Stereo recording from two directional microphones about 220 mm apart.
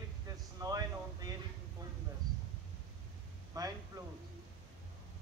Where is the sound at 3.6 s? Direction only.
15° right (ahead or behind).